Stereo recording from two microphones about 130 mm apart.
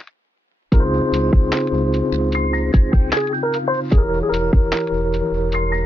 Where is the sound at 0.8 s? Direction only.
30° left (ahead or behind).